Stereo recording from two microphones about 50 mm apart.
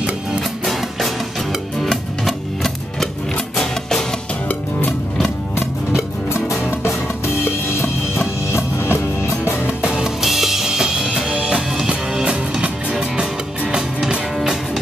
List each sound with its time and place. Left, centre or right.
0.4 s music: centre
5.6 s music: left
9.4 s music: right
10.2 s music: centre